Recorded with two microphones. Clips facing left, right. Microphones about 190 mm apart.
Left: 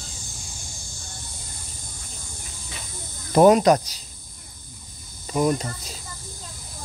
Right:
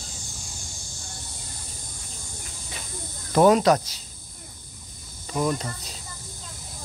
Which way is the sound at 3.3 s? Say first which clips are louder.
Left 3 dB; 15° left (ahead or behind).